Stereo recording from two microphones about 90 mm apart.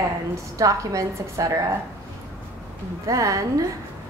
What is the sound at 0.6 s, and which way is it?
Speech, 40° right (ahead or behind).